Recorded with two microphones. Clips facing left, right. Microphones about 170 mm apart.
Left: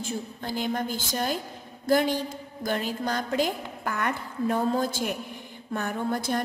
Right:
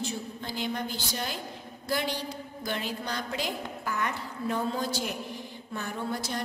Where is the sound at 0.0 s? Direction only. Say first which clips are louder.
Left 2 dB; 45° left (ahead or behind).